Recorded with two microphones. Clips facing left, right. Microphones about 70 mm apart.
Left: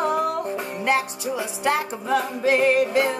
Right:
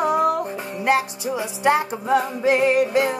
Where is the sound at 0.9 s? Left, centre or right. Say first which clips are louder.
Right 3 dB; centre.